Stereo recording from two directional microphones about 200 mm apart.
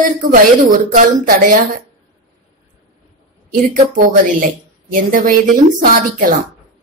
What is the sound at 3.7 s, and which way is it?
A woman's voice, 40° right (ahead or behind).